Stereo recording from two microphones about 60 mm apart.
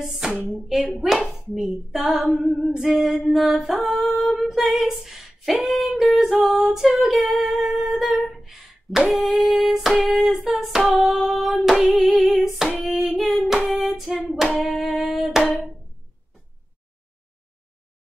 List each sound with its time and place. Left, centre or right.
0.0 s female singing: centre
0.7 s speech: centre
1.0 s female singing: centre
9.1 s hands: centre